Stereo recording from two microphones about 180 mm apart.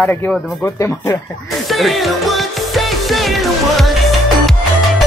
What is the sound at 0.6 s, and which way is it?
Speech, 15° left (ahead or behind).